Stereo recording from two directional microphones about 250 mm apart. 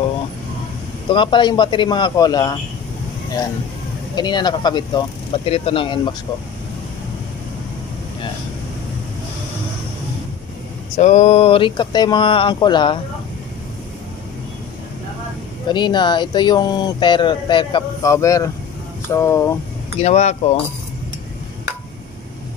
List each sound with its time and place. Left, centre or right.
1.0 s speech: centre
4.1 s speech: centre
11.0 s speech: left
15.7 s speech: centre
20.0 s speech: left